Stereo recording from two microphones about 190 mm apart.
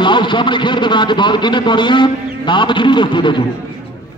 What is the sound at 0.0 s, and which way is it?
A man's voice, 25° left (ahead or behind).